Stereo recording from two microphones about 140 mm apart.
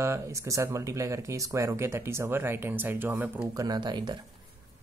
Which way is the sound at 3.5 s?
30° right (ahead or behind).